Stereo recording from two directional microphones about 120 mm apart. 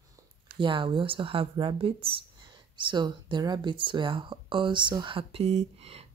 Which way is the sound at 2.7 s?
40° right (ahead or behind).